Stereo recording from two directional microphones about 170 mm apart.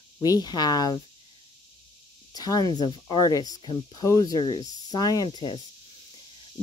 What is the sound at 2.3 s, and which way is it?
Speech, 20° left (ahead or behind).